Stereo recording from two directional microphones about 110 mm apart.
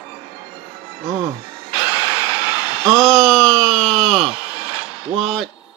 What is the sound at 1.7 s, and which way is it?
Vehicle, 35° left (ahead or behind).